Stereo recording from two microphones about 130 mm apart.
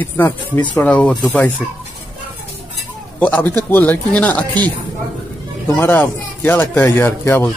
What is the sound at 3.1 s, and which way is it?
Speech, 10° left (ahead or behind).